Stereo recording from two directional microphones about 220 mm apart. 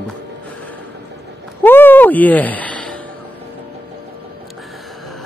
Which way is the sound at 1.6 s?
10° left (ahead or behind).